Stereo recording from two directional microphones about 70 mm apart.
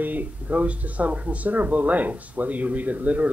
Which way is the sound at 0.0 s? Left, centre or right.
Right.